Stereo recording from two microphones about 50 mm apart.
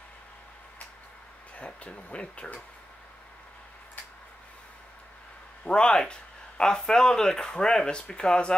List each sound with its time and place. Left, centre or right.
1.6 s speech: left
5.7 s speech: centre